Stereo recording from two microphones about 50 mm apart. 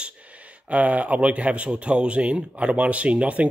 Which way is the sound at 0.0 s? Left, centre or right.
Right.